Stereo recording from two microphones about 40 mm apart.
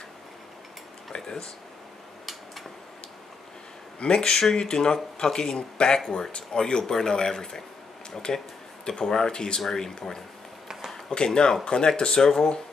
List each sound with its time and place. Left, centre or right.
1.1 s speech: centre
4.0 s speech: centre